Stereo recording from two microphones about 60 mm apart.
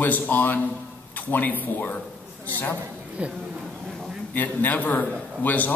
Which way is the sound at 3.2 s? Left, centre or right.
Right.